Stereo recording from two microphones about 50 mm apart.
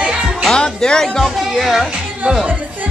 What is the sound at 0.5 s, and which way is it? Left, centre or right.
Speech, centre.